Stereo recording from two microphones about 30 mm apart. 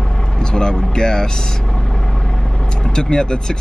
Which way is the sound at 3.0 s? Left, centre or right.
Left.